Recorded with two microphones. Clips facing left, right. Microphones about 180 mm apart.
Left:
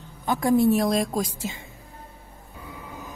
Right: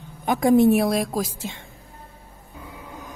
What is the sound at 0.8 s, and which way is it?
Speech, 5° right (ahead or behind).